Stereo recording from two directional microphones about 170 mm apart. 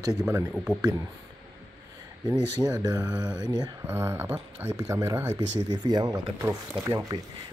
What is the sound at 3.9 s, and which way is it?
Speech, 15° right (ahead or behind).